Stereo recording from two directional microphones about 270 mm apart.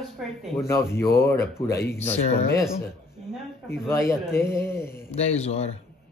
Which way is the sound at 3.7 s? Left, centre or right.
Centre.